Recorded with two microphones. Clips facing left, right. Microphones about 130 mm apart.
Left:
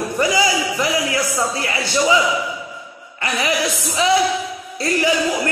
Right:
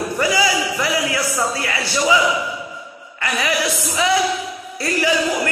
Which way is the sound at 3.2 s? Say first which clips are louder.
Left 1 dB; 20° left (ahead or behind).